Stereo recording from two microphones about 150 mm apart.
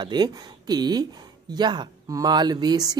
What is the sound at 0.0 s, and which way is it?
Speech, 30° right (ahead or behind).